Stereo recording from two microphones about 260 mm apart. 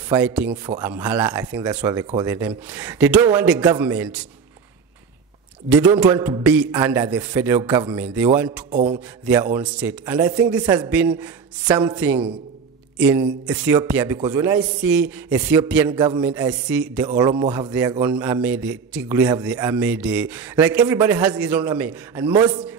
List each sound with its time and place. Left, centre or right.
0.1 s a man's voice: centre
5.7 s a man's voice: centre
8.5 s speech: right
9.2 s a man's voice: centre